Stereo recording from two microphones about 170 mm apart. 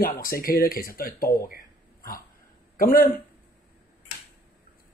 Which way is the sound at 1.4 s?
55° left (ahead or behind).